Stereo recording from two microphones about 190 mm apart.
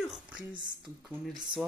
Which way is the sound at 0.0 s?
5° right (ahead or behind).